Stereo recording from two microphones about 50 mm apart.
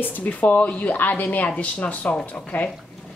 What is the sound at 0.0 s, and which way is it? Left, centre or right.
Speech, left.